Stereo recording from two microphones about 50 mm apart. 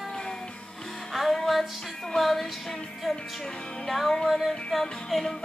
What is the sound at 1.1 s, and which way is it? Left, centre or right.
Music, centre.